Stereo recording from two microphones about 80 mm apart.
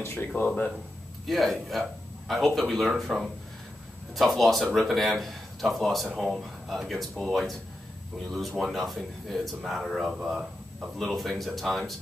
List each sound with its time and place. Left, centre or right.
0.0 s speech: left
1.2 s a man's voice: centre
8.5 s a man's voice: centre